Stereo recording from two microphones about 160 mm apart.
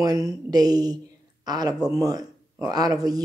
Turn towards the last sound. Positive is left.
turn(degrees=-25)  # may be behind; listen again after turning